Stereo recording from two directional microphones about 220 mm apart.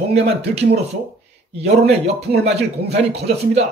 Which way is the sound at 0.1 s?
50° right (ahead or behind).